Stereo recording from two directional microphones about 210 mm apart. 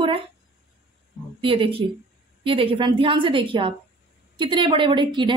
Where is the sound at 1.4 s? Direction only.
25° right (ahead or behind).